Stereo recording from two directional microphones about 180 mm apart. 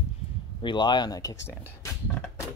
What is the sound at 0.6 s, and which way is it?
Speech, 25° left (ahead or behind).